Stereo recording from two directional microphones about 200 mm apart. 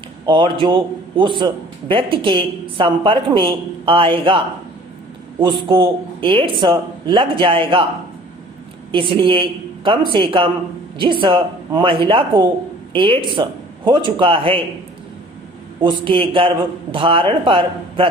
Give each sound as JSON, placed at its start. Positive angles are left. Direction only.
{"t": 0.2, "sound": "a man's voice", "side_deg": -25}
{"t": 5.4, "sound": "a man's voice", "side_deg": -20}
{"t": 8.9, "sound": "a man's voice", "side_deg": -25}
{"t": 15.8, "sound": "a man's voice", "side_deg": -25}